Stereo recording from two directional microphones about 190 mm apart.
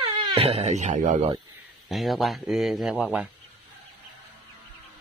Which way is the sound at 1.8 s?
Centre (ahead or behind).